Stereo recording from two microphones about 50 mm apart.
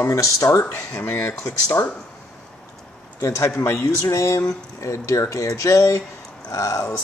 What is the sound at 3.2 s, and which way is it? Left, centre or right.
Speech, left.